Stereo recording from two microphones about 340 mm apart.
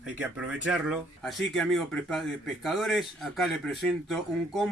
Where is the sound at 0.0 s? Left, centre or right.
Centre.